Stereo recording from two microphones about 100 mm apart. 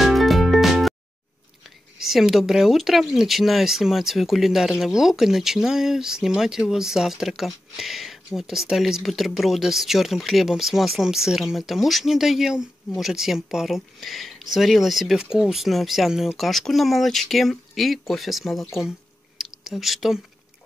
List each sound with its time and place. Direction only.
0.0 s music: centre (ahead or behind)
2.0 s speech: 5° right (ahead or behind)
19.3 s a sound: 5° right (ahead or behind)